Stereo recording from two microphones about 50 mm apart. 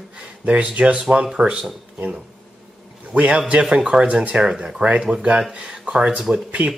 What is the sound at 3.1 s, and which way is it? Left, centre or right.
Speech, right.